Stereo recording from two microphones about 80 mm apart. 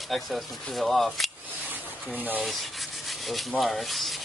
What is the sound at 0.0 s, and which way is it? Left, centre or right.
Speech, centre.